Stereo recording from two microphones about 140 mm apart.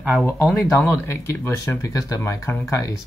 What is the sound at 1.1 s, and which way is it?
Speech, 15° left (ahead or behind).